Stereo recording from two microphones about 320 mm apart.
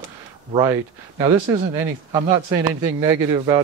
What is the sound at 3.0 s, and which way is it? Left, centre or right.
Speech, centre.